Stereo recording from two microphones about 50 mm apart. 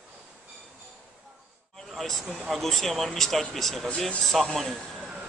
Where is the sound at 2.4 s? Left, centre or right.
Centre.